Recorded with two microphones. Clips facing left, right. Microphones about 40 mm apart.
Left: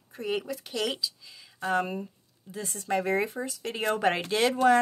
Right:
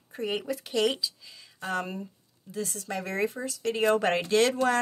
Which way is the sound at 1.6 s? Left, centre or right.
Centre.